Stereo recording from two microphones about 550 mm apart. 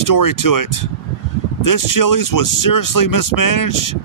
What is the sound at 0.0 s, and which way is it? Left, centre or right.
Speech, left.